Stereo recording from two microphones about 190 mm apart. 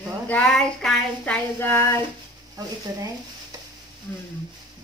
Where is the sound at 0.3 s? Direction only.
5° left (ahead or behind).